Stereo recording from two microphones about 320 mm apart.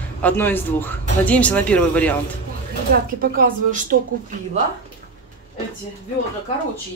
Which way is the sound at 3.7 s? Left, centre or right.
Right.